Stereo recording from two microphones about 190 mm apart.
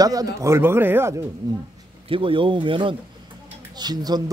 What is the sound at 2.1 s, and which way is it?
Speech, 25° right (ahead or behind).